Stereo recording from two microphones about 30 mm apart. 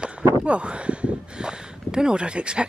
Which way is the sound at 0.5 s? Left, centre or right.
Right.